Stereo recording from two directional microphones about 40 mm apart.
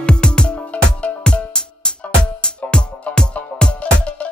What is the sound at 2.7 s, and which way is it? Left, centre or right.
Music, left.